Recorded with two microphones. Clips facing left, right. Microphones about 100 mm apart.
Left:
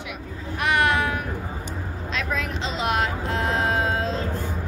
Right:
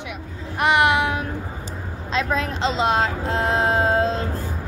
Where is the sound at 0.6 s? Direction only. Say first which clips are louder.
Right 4 dB; 20° right (ahead or behind).